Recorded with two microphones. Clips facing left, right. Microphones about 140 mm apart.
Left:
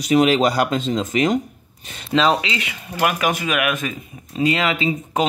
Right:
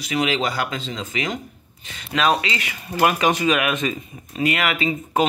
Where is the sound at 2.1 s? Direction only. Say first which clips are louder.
Left 2 dB; 25° left (ahead or behind).